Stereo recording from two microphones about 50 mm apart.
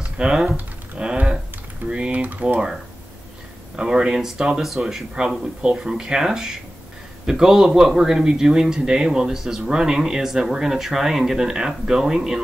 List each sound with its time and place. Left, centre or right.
0.2 s typing: centre
2.4 s a man's voice: centre
3.7 s a man's voice: centre